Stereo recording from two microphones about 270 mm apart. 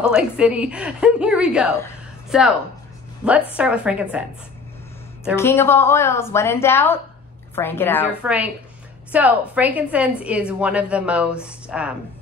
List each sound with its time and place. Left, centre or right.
0.0 s a woman's voice: centre
5.3 s a woman's voice: centre
8.1 s a woman's voice: centre